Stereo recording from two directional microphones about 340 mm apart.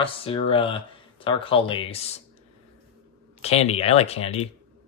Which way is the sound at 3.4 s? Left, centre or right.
Centre.